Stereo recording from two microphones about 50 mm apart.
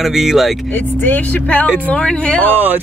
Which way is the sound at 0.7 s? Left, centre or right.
Left.